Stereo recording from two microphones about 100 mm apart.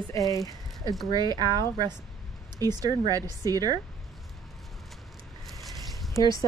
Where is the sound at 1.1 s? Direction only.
40° right (ahead or behind).